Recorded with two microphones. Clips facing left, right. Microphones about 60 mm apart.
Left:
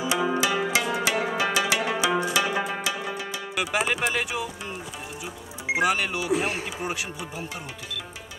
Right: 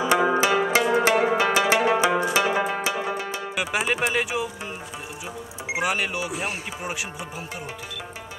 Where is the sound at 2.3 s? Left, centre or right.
Right.